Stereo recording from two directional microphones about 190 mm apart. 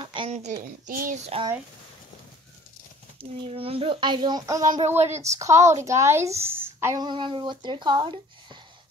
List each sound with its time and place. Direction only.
0.0 s speech: 25° right (ahead or behind)
3.2 s a woman's voice: 30° right (ahead or behind)